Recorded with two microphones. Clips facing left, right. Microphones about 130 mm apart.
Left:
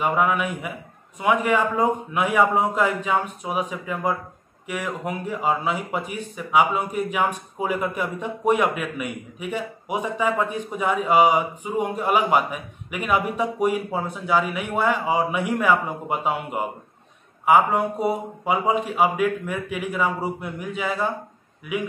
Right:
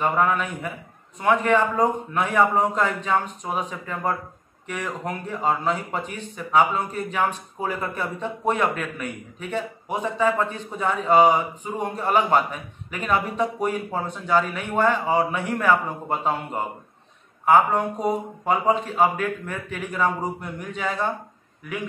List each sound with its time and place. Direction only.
0.0 s speech: 10° left (ahead or behind)